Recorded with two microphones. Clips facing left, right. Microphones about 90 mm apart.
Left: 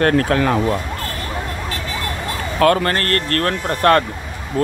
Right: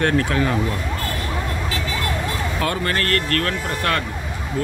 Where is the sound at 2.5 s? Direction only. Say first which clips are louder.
Left 11 dB; 65° left (ahead or behind).